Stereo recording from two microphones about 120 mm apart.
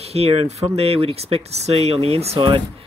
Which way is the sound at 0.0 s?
55° right (ahead or behind).